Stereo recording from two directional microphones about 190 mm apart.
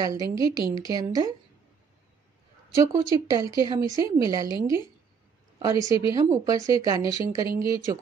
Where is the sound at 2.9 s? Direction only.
15° right (ahead or behind).